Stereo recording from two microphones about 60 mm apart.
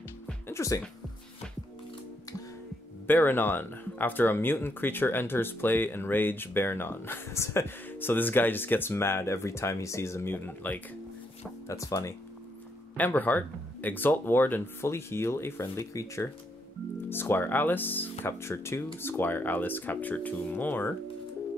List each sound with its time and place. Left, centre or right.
0.5 s music: left
3.1 s speech: left
10.2 s speech: left
11.6 s speech: left
12.9 s speech: left
14.9 s speech: left
17.1 s speech: left
18.4 s speech: left